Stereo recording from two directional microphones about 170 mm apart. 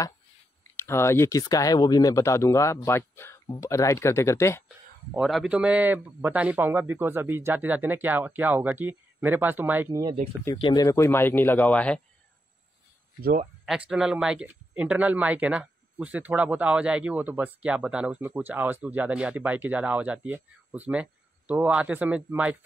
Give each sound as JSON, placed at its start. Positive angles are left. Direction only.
{"t": 0.7, "sound": "speech", "side_deg": 15}
{"t": 5.1, "sound": "speech", "side_deg": -5}
{"t": 10.4, "sound": "speech", "side_deg": 25}
{"t": 13.7, "sound": "speech", "side_deg": -5}